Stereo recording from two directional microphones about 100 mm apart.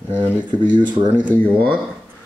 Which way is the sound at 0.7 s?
50° right (ahead or behind).